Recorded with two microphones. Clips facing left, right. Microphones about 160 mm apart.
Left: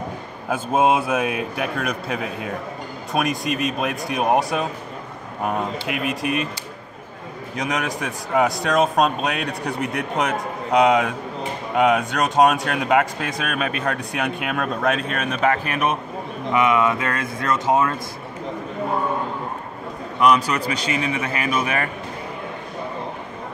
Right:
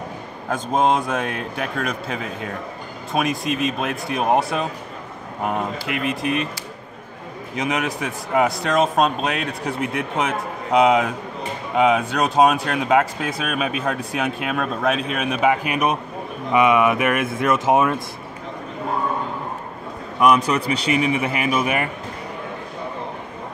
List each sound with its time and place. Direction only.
0.5 s speech: 5° left (ahead or behind)
7.5 s speech: 5° right (ahead or behind); by 17.9 s 20° right (ahead or behind)
20.4 s speech: 30° right (ahead or behind)
21.0 s speech: 15° right (ahead or behind)